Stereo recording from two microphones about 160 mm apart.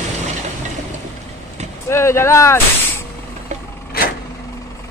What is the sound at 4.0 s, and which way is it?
Vehicle, 70° left (ahead or behind).